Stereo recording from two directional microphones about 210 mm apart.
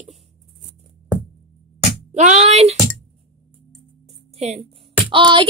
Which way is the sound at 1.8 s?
30° right (ahead or behind).